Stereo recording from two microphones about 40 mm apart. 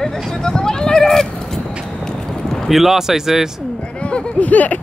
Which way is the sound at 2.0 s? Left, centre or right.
Centre.